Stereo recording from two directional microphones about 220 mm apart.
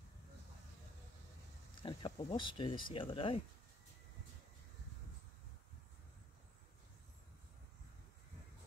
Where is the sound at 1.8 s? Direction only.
20° left (ahead or behind).